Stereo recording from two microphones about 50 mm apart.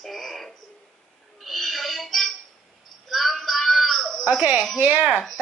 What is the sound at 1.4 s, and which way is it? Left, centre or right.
Music, centre.